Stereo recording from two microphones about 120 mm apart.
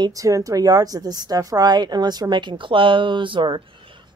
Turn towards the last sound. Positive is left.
turn(degrees=-45)  # may be behind; listen again after turning